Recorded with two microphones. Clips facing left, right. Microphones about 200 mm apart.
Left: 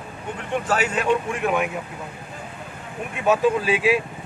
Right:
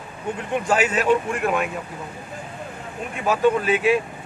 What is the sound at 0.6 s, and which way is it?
Speech, 10° right (ahead or behind).